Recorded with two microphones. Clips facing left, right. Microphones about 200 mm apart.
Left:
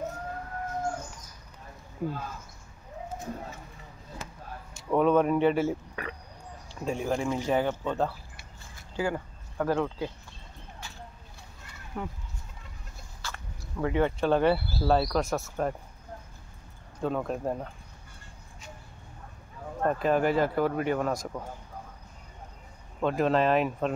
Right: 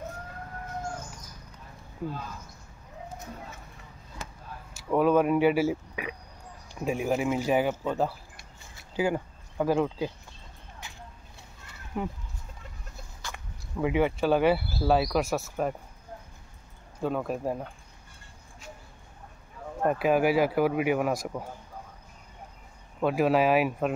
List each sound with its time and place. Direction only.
2.0 s speech: 5° left (ahead or behind)
4.7 s speech: 5° right (ahead or behind)
10.8 s clip-clop: 20° right (ahead or behind)
11.9 s speech: 15° right (ahead or behind)
13.2 s speech: 10° right (ahead or behind)
17.0 s speech: 5° right (ahead or behind)
19.8 s speech: 10° right (ahead or behind)
22.9 s speech: 10° right (ahead or behind)